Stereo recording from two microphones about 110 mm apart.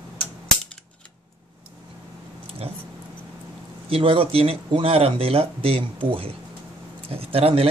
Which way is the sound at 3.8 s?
55° right (ahead or behind).